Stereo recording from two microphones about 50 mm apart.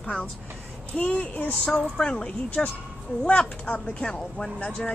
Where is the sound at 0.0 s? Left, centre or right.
Centre.